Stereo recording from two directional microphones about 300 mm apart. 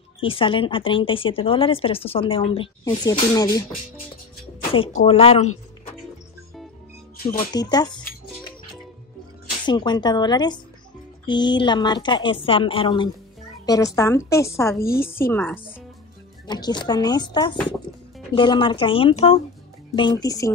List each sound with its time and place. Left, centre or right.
0.2 s speech: centre
7.5 s speech: centre
9.7 s speech: centre